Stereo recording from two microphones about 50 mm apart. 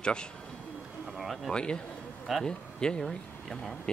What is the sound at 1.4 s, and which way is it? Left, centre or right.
Speech, centre.